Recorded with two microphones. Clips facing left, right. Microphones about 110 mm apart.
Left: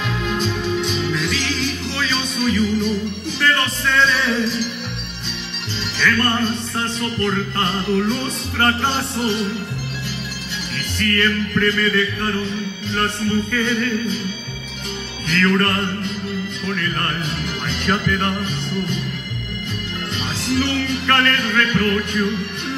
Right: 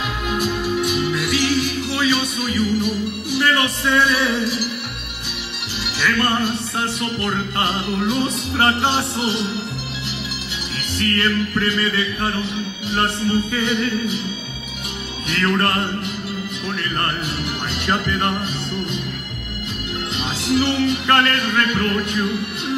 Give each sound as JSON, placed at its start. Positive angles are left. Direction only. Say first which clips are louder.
{"t": 0.3, "sound": "music", "louder": "right 1 dB", "side_deg": -10}
{"t": 5.9, "sound": "music", "louder": "even", "side_deg": -10}
{"t": 11.1, "sound": "music", "louder": "left 1 dB", "side_deg": -20}
{"t": 15.2, "sound": "music", "louder": "left 2 dB", "side_deg": -10}
{"t": 17.6, "sound": "music", "louder": "left 2 dB", "side_deg": -5}
{"t": 20.5, "sound": "music", "louder": "right 3 dB", "side_deg": -15}